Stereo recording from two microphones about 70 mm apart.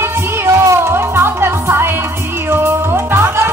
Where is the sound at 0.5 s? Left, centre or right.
Right.